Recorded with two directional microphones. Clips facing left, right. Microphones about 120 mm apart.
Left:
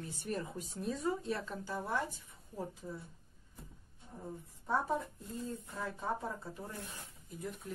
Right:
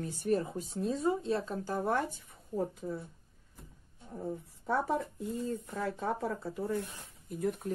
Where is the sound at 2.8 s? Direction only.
90° right.